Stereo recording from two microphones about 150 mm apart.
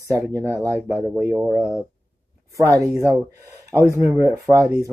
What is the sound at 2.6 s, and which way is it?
Speech, 20° right (ahead or behind).